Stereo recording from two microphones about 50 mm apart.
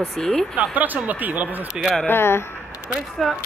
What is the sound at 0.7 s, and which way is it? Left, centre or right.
Speech, right.